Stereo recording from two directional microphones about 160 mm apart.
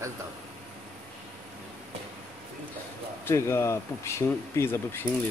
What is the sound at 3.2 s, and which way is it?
Speech, 15° left (ahead or behind).